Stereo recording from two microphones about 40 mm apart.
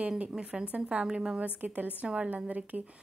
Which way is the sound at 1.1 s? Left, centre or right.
Centre.